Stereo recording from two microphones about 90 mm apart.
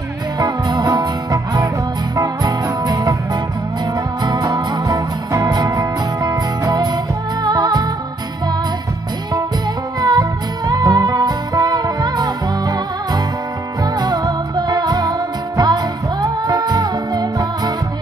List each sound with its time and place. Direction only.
0.4 s music: 50° right (ahead or behind)
4.2 s music: 45° right (ahead or behind)
9.9 s music: 50° right (ahead or behind)